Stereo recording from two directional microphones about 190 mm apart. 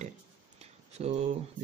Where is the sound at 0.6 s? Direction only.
35° right (ahead or behind).